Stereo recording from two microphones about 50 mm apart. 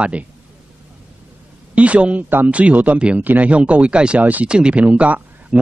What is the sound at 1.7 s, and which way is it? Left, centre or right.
A man's voice, right.